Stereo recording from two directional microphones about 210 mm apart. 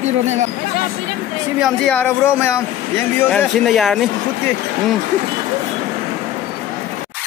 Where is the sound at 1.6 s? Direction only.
5° left (ahead or behind).